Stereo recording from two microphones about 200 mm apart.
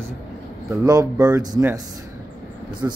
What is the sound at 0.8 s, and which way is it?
Speech, 20° right (ahead or behind).